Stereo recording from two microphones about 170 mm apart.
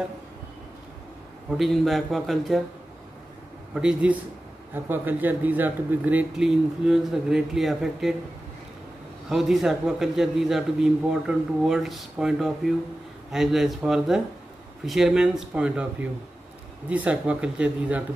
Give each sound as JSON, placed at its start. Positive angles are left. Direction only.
{"t": 1.5, "sound": "a man's voice", "side_deg": 0}
{"t": 3.7, "sound": "a man's voice", "side_deg": -5}
{"t": 9.3, "sound": "a man's voice", "side_deg": 0}